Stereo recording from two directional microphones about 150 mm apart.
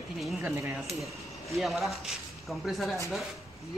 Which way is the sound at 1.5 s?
Centre (ahead or behind).